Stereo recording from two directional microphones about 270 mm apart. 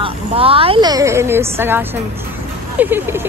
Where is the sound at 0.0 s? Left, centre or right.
Right.